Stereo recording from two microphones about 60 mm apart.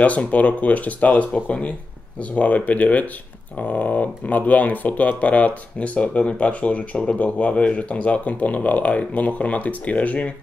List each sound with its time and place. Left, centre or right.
0.0 s speech: left